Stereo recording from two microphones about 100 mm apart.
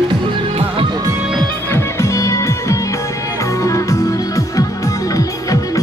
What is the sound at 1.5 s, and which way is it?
Music, 25° left (ahead or behind).